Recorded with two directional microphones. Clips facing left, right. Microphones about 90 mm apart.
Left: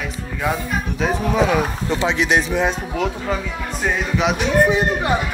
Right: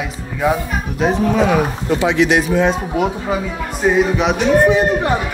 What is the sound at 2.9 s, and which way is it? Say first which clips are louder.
A man's voice: right 4 dB; 10° right (ahead or behind).